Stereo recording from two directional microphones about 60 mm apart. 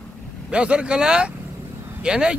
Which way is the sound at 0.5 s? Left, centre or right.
Centre.